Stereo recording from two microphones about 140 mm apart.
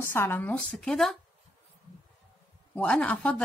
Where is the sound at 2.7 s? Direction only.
10° left (ahead or behind).